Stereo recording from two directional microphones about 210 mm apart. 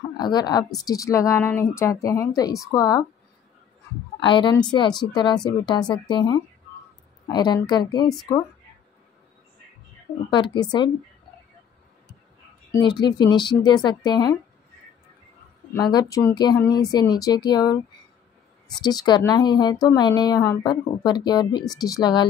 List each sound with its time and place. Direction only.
0.2 s a woman's voice: 20° left (ahead or behind)
4.2 s a woman's voice: 20° left (ahead or behind)
10.3 s a woman's voice: 20° left (ahead or behind)
12.7 s a woman's voice: 20° left (ahead or behind)
15.7 s a woman's voice: 20° left (ahead or behind)